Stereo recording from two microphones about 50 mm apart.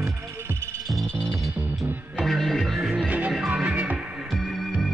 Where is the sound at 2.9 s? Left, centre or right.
Right.